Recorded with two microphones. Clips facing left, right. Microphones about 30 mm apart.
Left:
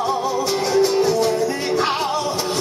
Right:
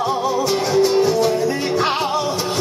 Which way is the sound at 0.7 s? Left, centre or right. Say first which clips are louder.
Right 1 dB; centre.